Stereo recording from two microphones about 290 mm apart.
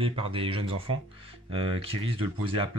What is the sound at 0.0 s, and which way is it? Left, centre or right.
Speech, centre.